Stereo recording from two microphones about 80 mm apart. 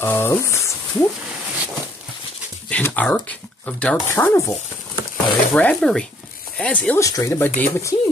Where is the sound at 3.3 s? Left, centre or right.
Centre.